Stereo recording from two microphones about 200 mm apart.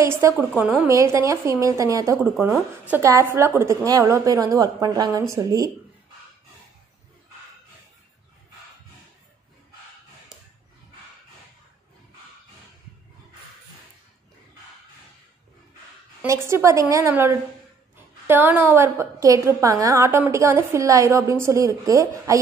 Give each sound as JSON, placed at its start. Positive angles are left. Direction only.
{"t": 0.0, "sound": "a woman's voice", "side_deg": -15}
{"t": 2.3, "sound": "speech", "side_deg": 0}
{"t": 2.9, "sound": "a woman's voice", "side_deg": -15}
{"t": 16.2, "sound": "a woman's voice", "side_deg": -15}